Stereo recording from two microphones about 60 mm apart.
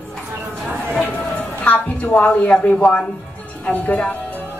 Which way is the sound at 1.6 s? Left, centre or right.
Left.